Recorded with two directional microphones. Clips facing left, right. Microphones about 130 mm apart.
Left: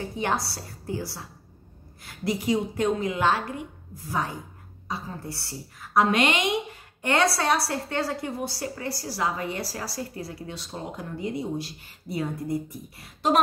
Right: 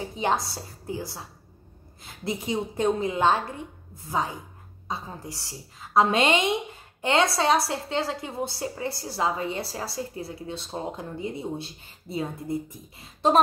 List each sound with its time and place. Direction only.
0.0 s a woman's voice: 20° right (ahead or behind)